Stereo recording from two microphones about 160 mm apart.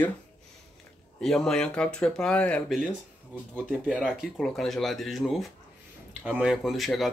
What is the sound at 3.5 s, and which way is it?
Speech, 10° right (ahead or behind).